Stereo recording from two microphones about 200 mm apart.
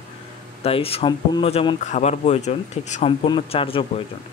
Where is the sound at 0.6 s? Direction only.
30° left (ahead or behind).